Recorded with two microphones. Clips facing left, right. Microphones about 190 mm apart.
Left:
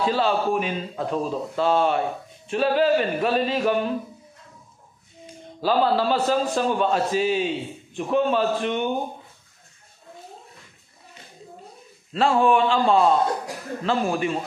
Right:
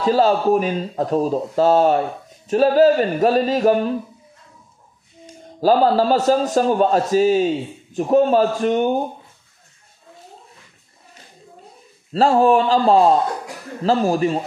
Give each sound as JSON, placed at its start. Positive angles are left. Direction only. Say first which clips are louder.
{"t": 0.0, "sound": "speech", "louder": "right 6 dB", "side_deg": -40}
{"t": 5.2, "sound": "speech", "louder": "right 8 dB", "side_deg": -40}
{"t": 12.1, "sound": "speech", "louder": "right 5 dB", "side_deg": -35}